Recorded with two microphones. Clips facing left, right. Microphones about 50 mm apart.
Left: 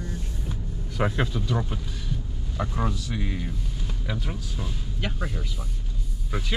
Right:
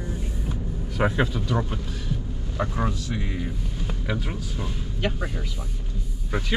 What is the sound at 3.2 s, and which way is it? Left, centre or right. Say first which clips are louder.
Speech: right 1 dB; centre.